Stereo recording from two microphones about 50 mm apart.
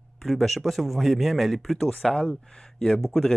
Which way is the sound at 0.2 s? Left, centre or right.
Centre.